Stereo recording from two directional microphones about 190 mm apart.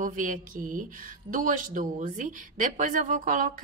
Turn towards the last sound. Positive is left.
turn(degrees=-45)  # may be behind; listen again after turning